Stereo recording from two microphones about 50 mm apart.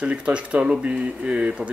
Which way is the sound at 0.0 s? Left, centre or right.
Right.